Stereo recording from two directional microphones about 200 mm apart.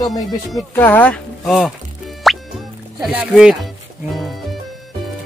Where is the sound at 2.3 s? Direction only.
Centre (ahead or behind).